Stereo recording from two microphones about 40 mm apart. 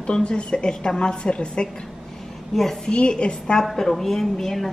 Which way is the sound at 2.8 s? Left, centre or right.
Left.